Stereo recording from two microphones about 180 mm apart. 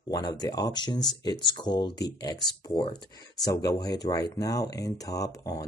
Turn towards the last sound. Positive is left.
turn(degrees=20)  # may be behind; listen again after turning